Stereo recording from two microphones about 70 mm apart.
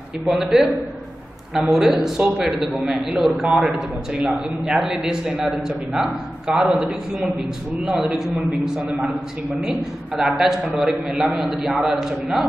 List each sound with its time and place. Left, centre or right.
0.2 s a man's voice: centre
10.1 s a man's voice: centre